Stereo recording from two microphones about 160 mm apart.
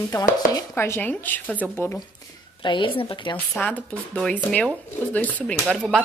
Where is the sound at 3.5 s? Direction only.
10° left (ahead or behind).